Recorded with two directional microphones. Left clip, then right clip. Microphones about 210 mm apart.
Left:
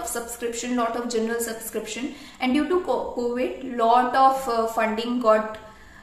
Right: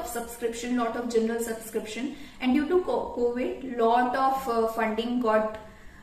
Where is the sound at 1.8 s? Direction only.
10° right (ahead or behind).